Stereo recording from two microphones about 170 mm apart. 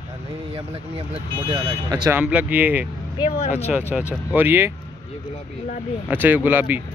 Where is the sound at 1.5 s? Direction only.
25° right (ahead or behind).